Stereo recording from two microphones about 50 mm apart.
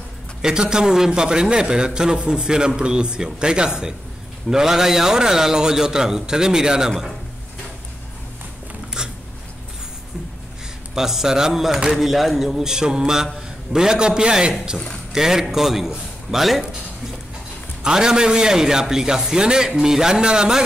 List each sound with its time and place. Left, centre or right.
0.4 s a man's voice: centre
9.0 s a sound: centre
11.0 s a man's voice: centre
17.8 s a man's voice: centre